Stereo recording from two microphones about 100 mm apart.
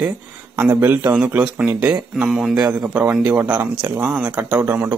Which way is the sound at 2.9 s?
15° right (ahead or behind).